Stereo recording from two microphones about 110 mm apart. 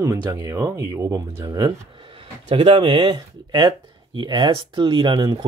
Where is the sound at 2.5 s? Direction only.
55° right (ahead or behind).